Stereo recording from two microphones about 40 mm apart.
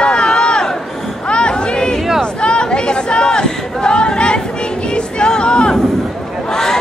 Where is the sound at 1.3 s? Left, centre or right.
Left.